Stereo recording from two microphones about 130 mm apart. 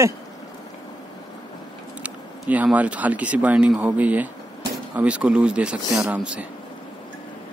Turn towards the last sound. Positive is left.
turn(degrees=-10)  # may be behind; listen again after turning